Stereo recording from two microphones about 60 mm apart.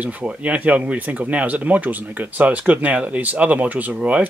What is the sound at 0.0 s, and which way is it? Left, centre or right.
Speech, right.